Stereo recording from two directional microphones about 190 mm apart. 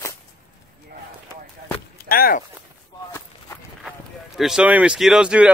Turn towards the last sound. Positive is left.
turn(degrees=-5)  # may be behind; listen again after turning